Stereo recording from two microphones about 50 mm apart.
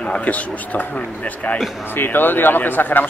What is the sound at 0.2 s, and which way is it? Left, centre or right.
Speech, left.